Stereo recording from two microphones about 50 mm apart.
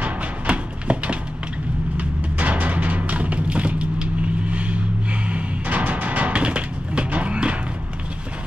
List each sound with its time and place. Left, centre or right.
0.0 s music: right